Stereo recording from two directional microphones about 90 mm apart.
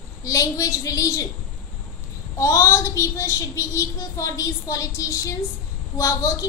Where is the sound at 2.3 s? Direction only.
35° left (ahead or behind).